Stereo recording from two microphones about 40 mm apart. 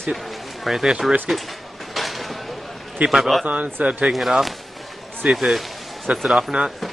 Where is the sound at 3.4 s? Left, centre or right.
Right.